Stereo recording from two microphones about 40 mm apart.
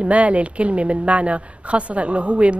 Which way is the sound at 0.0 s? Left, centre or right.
Right.